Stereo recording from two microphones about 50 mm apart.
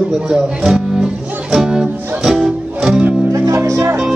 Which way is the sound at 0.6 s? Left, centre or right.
Centre.